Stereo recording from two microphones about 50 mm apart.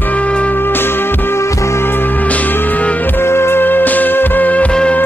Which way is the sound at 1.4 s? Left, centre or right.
Left.